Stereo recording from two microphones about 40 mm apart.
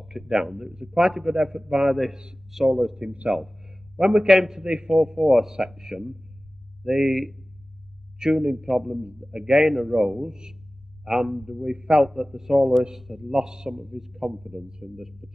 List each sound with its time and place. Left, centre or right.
0.0 s speech: centre
2.1 s speech: centre
2.5 s a man's voice: centre
3.3 s a sound: centre
4.0 s a man's voice: centre
8.2 s a man's voice: centre
13.4 s speech: centre